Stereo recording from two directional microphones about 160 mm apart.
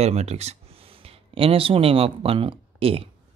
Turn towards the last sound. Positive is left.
turn(degrees=-35)  # may be behind; listen again after turning